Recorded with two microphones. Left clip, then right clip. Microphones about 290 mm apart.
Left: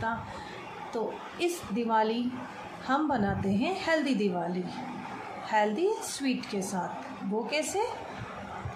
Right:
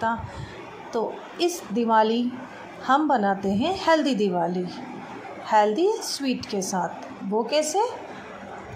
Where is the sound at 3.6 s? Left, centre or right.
Centre.